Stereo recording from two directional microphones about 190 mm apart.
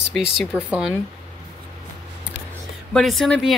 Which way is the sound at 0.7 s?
5° right (ahead or behind).